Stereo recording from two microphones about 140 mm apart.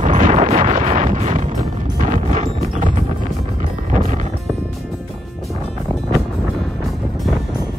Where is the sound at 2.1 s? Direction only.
65° right (ahead or behind).